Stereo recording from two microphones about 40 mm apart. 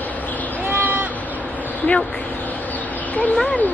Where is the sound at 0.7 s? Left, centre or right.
Right.